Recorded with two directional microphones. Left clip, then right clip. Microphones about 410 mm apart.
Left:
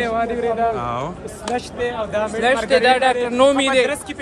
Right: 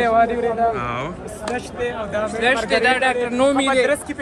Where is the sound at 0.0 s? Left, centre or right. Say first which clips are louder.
Right 4 dB; centre.